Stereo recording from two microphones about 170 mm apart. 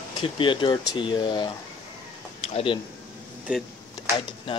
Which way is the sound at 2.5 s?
35° left (ahead or behind).